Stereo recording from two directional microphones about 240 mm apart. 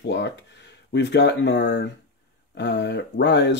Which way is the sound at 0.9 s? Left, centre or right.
Left.